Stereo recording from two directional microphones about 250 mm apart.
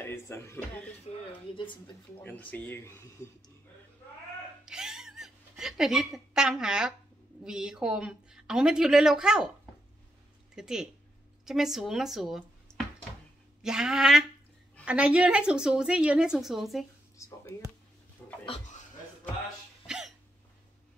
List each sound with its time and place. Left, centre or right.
0.0 s a woman's voice: centre
2.2 s speech: centre
4.6 s cat: centre
7.4 s a woman's voice: centre
10.5 s a woman's voice: centre
18.2 s dog: centre